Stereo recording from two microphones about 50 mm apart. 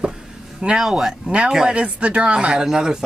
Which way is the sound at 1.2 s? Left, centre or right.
Right.